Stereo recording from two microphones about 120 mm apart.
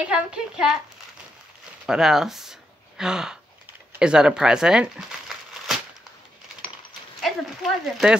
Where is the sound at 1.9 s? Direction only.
5° right (ahead or behind).